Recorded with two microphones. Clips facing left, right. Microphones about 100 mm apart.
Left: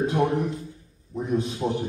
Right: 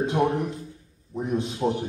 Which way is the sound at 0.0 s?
20° right (ahead or behind).